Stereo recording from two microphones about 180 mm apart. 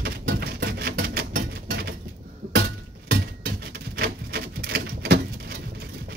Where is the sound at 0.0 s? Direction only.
65° right (ahead or behind).